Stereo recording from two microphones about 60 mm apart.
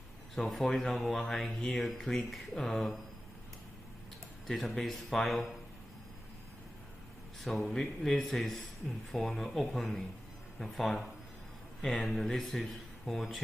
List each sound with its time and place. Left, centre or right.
0.4 s speech: centre
4.5 s speech: centre
7.4 s speech: centre